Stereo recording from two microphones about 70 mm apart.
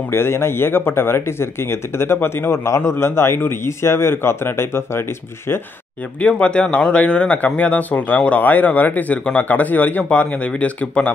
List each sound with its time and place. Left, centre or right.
0.1 s speech: left
6.1 s speech: left